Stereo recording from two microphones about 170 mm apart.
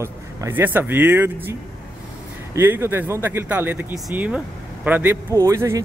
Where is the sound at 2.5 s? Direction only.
15° right (ahead or behind).